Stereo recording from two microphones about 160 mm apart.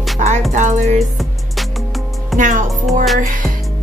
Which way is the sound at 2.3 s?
55° right (ahead or behind).